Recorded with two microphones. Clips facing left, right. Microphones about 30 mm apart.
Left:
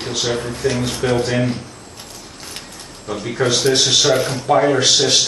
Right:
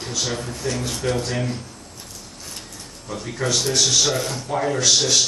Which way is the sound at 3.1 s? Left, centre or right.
Left.